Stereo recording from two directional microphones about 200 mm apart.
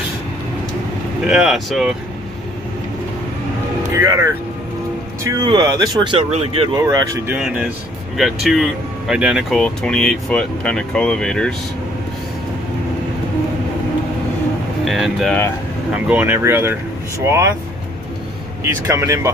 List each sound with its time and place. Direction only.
1.2 s speech: 5° right (ahead or behind)
3.9 s speech: 15° right (ahead or behind)
6.8 s speech: 15° right (ahead or behind)
7.3 s speech: 5° right (ahead or behind)
14.9 s speech: centre (ahead or behind)
18.6 s speech: 15° right (ahead or behind)